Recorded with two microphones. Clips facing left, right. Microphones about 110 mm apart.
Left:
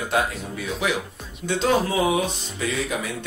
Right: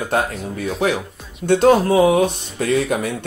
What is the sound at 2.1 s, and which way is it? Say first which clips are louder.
Music: right 7 dB; 55° right (ahead or behind).